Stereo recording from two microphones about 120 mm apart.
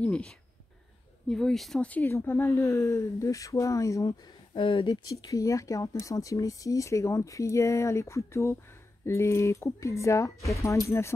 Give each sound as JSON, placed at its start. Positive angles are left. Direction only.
{"t": 0.0, "sound": "speech", "side_deg": 10}
{"t": 1.3, "sound": "speech", "side_deg": 5}
{"t": 4.6, "sound": "speech", "side_deg": 45}
{"t": 5.0, "sound": "speech", "side_deg": 30}